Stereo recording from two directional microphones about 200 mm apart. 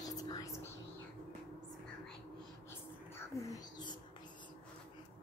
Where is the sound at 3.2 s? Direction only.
15° left (ahead or behind).